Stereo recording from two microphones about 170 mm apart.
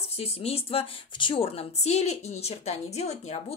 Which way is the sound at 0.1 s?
35° left (ahead or behind).